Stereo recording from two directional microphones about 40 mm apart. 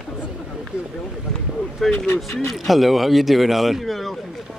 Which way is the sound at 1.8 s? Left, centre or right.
Centre.